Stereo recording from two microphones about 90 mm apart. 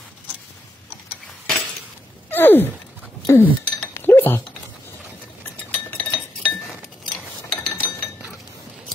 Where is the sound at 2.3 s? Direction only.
25° left (ahead or behind).